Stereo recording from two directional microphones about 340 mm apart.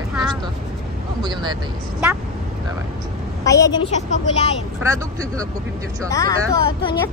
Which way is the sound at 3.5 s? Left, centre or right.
Centre.